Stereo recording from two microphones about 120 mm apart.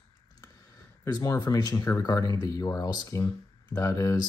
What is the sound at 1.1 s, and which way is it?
Speech, 30° left (ahead or behind).